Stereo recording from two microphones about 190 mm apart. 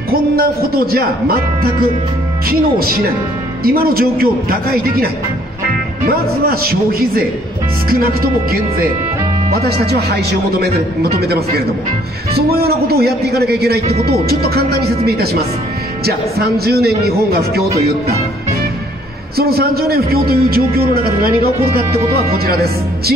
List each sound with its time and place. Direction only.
0.1 s a man's voice: 50° right (ahead or behind)
3.6 s a man's voice: 50° right (ahead or behind)
6.0 s a man's voice: 50° right (ahead or behind)
19.3 s a man's voice: 55° right (ahead or behind)